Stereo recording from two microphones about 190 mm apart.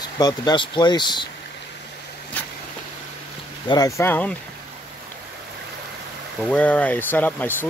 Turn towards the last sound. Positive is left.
turn(degrees=10)  # may be behind; listen again after turning